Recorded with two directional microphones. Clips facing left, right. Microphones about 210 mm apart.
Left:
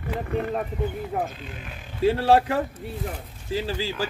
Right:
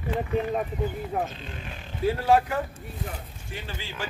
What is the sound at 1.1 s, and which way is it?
Speech, centre (ahead or behind).